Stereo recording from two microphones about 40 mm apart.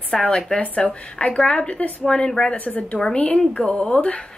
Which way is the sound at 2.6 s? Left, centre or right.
Left.